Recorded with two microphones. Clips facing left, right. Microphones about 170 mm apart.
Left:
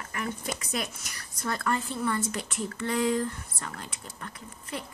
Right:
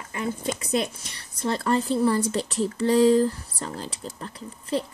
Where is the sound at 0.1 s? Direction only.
25° right (ahead or behind).